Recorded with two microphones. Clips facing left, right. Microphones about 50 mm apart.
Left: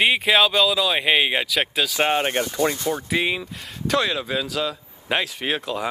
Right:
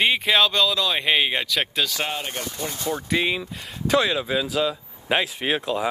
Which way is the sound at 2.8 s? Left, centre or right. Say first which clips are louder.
Left 1 dB; centre.